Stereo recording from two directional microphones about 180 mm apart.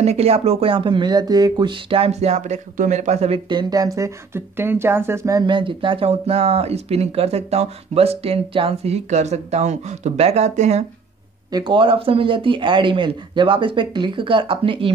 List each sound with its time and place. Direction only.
0.0 s speech: 35° right (ahead or behind)
3.4 s speech: 20° right (ahead or behind); by 10.9 s 40° right (ahead or behind)
11.5 s speech: 25° right (ahead or behind)